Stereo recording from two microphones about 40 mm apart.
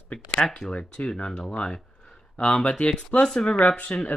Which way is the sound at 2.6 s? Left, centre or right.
Left.